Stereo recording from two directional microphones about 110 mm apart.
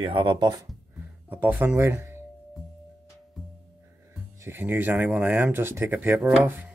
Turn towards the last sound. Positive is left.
turn(degrees=-20)  # may be behind; listen again after turning